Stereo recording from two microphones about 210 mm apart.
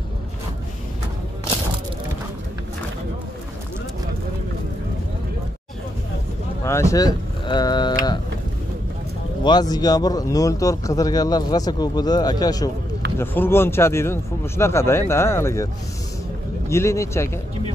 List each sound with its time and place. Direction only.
6.6 s speech: 15° left (ahead or behind)
9.4 s a man's voice: 20° left (ahead or behind)